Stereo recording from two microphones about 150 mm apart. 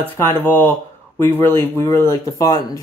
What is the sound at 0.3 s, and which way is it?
Speech, 15° left (ahead or behind).